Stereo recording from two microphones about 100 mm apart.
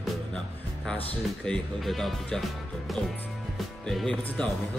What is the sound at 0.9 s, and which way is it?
Speech, 10° left (ahead or behind).